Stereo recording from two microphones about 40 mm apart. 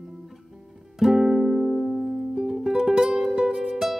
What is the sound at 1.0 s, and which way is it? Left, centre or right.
Music, centre.